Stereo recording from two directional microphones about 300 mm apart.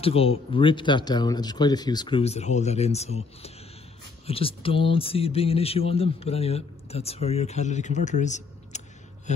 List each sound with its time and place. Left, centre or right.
0.0 s a man's voice: centre